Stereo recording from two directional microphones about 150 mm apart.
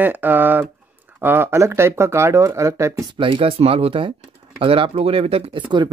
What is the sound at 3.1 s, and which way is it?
Speech, 35° right (ahead or behind).